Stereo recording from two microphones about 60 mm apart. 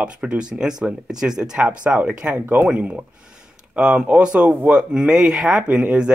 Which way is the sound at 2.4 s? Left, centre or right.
Right.